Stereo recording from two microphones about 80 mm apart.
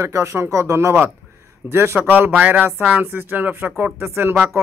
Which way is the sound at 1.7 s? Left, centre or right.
Right.